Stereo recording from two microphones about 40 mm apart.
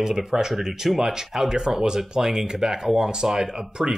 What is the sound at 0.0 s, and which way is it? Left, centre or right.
Speech, centre.